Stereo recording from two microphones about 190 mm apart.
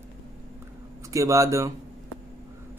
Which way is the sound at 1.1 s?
15° right (ahead or behind).